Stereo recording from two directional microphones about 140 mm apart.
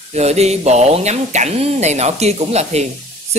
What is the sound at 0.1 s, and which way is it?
Speech, 50° right (ahead or behind).